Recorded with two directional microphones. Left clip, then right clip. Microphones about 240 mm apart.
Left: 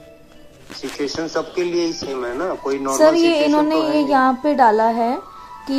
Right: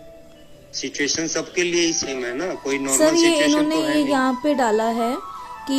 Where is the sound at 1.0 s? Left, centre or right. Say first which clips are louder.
Left 2 dB; right.